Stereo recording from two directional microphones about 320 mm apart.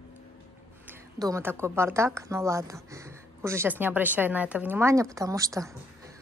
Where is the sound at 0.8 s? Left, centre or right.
Centre.